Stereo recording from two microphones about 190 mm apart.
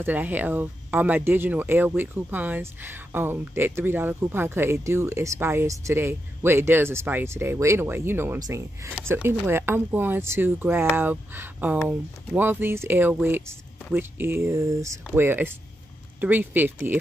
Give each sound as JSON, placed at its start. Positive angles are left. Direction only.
{"t": 0.0, "sound": "speech", "side_deg": -10}